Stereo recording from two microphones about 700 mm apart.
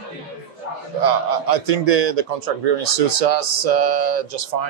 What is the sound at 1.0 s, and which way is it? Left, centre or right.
A man's voice, right.